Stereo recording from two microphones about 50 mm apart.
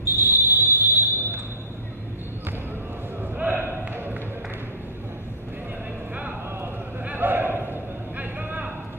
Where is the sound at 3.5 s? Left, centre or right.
Right.